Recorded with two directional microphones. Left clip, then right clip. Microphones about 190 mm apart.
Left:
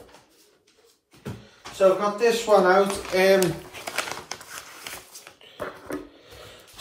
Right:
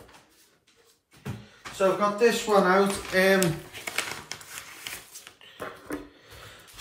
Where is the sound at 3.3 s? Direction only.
10° right (ahead or behind).